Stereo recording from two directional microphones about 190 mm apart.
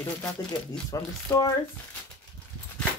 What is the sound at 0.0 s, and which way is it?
Speech, 15° left (ahead or behind).